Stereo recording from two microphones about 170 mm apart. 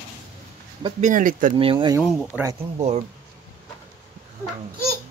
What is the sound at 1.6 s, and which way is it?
Speech, 30° right (ahead or behind).